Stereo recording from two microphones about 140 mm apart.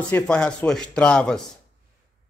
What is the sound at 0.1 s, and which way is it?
Speech, 5° left (ahead or behind).